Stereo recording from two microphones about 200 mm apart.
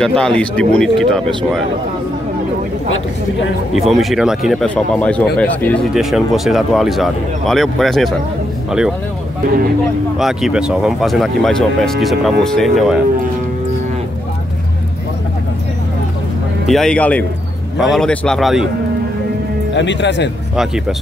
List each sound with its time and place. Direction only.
0.0 s speech: 5° left (ahead or behind)
3.7 s speech: centre (ahead or behind)
10.1 s speech: centre (ahead or behind)
16.6 s speech: centre (ahead or behind)
19.7 s speech: 65° left (ahead or behind)